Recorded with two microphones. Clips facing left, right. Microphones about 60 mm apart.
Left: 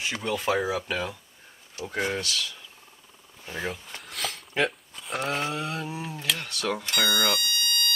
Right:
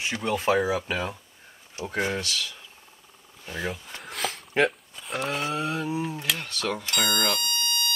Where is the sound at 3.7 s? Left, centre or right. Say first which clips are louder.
Right 1 dB; centre.